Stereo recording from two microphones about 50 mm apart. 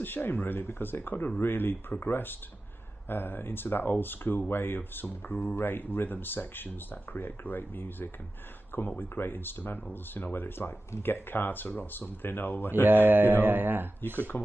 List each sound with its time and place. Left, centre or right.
0.0 s speech: left
12.8 s speech: right
14.1 s speech: left